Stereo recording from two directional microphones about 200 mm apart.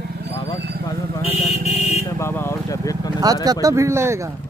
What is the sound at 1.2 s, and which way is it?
Vehicle, 30° left (ahead or behind).